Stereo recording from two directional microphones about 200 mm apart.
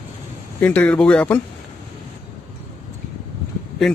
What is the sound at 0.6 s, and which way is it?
Speech, 10° left (ahead or behind).